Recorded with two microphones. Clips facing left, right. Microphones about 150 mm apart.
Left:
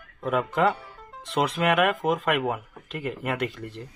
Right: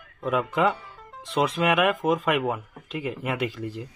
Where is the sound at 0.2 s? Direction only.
Centre (ahead or behind).